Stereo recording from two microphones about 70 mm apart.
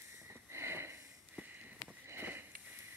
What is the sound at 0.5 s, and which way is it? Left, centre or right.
Sniff, right.